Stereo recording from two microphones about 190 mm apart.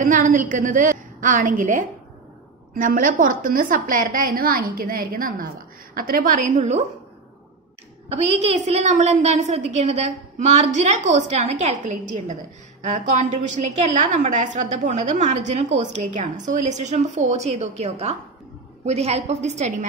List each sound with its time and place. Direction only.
0.0 s a woman's voice: 45° right (ahead or behind)
8.1 s a woman's voice: 35° right (ahead or behind)